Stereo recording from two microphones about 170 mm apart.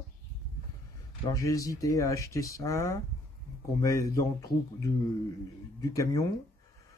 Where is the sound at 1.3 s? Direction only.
20° left (ahead or behind).